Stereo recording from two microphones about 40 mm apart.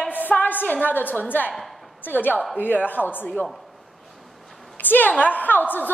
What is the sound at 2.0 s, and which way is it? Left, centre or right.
A woman's voice, left.